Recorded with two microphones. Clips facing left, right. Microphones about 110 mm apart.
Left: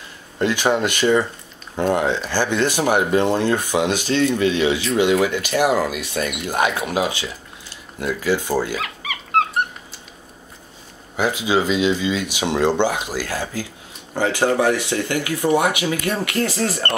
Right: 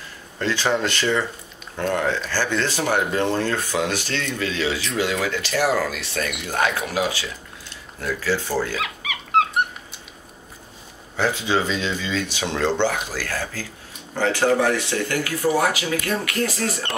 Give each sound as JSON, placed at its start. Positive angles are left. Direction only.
{"t": 0.4, "sound": "speech", "side_deg": 15}
{"t": 8.8, "sound": "dog", "side_deg": 0}
{"t": 11.1, "sound": "speech", "side_deg": 10}